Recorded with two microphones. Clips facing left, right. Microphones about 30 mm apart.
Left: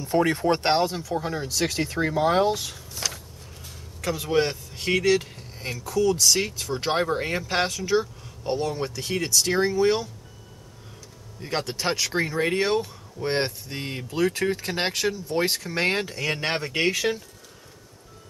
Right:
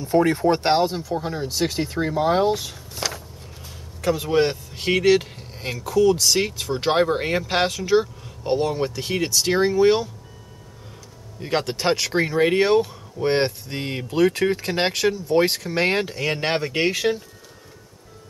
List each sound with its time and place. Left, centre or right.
0.0 s speech: centre
2.9 s vehicle: right
4.0 s speech: centre
8.0 s a sound: right
8.7 s speech: centre
11.4 s speech: right